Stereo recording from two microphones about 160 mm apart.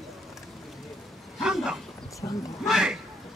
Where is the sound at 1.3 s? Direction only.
5° right (ahead or behind).